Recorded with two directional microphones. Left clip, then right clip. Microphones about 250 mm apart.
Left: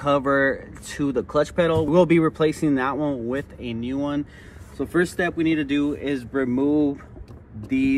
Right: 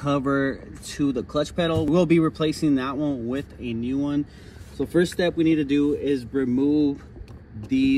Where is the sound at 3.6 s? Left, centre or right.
Left.